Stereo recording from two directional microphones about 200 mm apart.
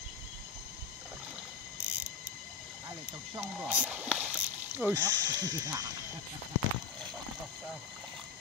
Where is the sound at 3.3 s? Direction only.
5° right (ahead or behind).